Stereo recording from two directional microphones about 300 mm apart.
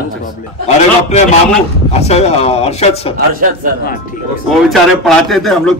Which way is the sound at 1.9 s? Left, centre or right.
Left.